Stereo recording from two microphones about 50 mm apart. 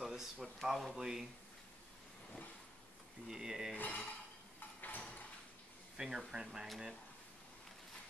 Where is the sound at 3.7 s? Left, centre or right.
Left.